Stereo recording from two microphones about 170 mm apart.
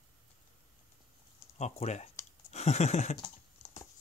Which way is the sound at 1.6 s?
40° left (ahead or behind).